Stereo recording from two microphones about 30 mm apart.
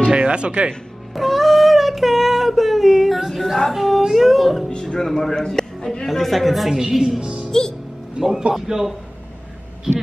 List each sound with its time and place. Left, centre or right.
0.1 s music: right
1.1 s child singing: centre
3.3 s female singing: centre
3.7 s a sound: centre
4.6 s music: left
5.0 s speech: centre
6.0 s a sound: centre
6.9 s a man's voice: centre
7.2 s music: right
8.2 s a man's voice: centre